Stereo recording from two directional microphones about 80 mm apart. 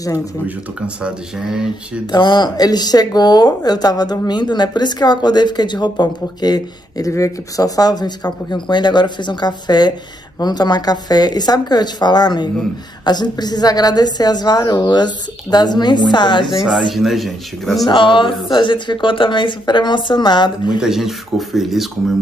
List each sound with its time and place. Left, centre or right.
1.0 s speech: centre
2.1 s speech: left
7.1 s a woman's voice: left
16.4 s speech: centre
17.8 s speech: left
18.5 s a woman's voice: left
20.8 s speech: centre